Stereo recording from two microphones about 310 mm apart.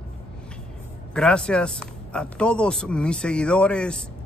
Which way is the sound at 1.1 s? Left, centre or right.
Centre.